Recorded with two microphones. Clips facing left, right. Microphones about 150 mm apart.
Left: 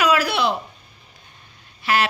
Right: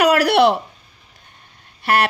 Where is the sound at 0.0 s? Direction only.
70° right (ahead or behind).